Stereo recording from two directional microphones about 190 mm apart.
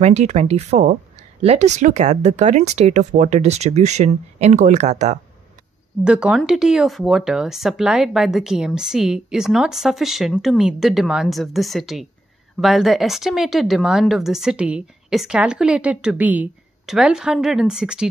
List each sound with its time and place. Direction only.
0.0 s speech: 35° right (ahead or behind)
6.0 s speech: 5° right (ahead or behind)